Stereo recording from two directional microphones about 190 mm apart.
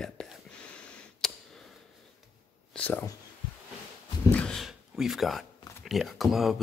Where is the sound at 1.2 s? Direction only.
Centre (ahead or behind).